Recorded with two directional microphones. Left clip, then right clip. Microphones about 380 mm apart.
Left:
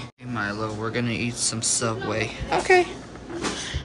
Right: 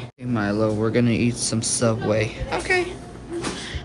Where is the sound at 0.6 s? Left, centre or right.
Right.